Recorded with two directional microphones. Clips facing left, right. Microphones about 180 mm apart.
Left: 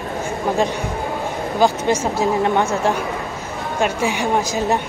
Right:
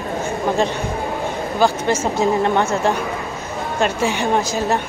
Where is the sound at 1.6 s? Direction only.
20° left (ahead or behind).